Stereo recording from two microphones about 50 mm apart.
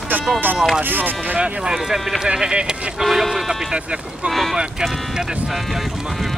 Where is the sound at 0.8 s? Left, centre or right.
Right.